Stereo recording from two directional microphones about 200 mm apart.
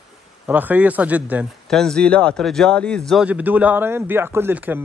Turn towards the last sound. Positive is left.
turn(degrees=-10)  # may be behind; listen again after turning